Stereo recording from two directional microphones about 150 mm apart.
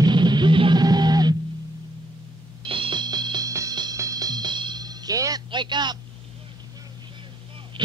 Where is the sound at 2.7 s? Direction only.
35° right (ahead or behind).